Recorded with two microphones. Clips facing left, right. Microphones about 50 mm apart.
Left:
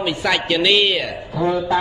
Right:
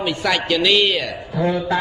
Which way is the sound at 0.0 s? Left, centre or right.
Centre.